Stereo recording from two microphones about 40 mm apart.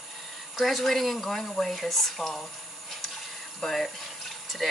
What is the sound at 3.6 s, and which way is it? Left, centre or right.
Speech, centre.